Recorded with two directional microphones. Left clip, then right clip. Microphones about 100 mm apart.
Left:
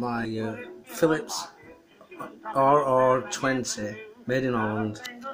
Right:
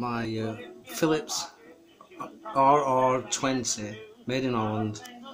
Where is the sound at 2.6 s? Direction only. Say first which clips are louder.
Left 1 dB; 5° right (ahead or behind).